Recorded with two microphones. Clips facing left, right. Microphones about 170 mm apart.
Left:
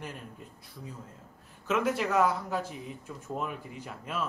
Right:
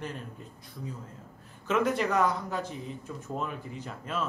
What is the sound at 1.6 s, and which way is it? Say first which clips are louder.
Speech: right 2 dB; 5° left (ahead or behind).